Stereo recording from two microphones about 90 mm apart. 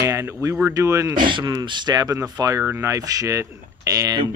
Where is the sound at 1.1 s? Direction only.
55° right (ahead or behind); by 4.2 s 40° right (ahead or behind).